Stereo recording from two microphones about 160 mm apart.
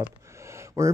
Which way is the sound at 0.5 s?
20° right (ahead or behind).